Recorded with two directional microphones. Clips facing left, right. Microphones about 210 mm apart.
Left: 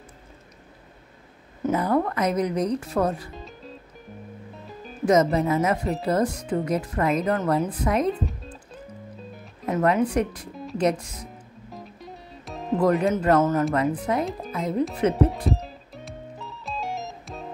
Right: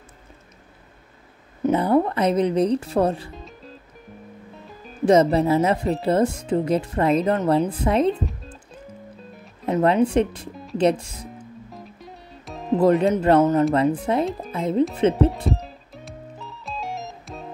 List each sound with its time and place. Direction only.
1.7 s speech: 30° right (ahead or behind)
3.3 s music: centre (ahead or behind)
5.0 s speech: 30° right (ahead or behind)
9.7 s speech: 25° right (ahead or behind)
10.5 s music: centre (ahead or behind)
10.8 s speech: 30° right (ahead or behind)
11.7 s music: centre (ahead or behind)
12.7 s speech: 25° right (ahead or behind)
13.7 s speech: 30° right (ahead or behind)
15.4 s music: centre (ahead or behind)